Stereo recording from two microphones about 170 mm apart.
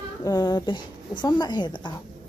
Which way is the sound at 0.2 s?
20° left (ahead or behind).